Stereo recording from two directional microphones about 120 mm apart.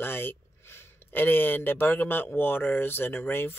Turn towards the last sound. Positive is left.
turn(degrees=15)  # may be behind; listen again after turning